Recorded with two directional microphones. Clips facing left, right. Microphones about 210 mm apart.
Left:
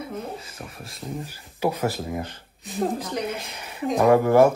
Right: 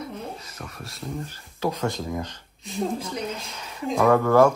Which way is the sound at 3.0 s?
35° left (ahead or behind).